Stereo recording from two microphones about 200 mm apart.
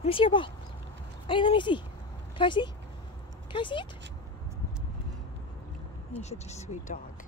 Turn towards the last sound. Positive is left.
turn(degrees=40)  # may be behind; listen again after turning